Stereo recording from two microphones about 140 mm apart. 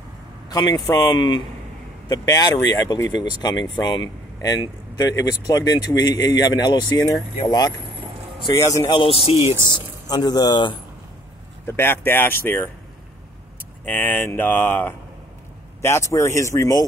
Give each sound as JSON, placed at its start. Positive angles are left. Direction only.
{"t": 0.5, "sound": "speech", "side_deg": 30}
{"t": 8.9, "sound": "speech", "side_deg": 40}
{"t": 10.0, "sound": "speech", "side_deg": 30}
{"t": 11.6, "sound": "speech", "side_deg": 15}
{"t": 13.8, "sound": "speech", "side_deg": 10}